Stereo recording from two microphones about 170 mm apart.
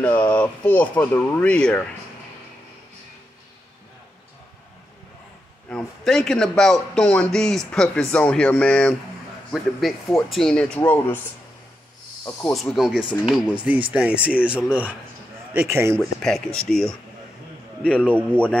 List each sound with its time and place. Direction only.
0.0 s speech: 10° left (ahead or behind)
5.7 s a man's voice: 5° left (ahead or behind)
12.3 s speech: 15° left (ahead or behind)
12.6 s a man's voice: centre (ahead or behind)
16.0 s a man's voice: centre (ahead or behind)
18.1 s speech: 10° left (ahead or behind)